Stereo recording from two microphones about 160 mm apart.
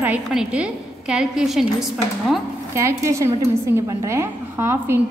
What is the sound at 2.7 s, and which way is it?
A woman's voice, 20° right (ahead or behind).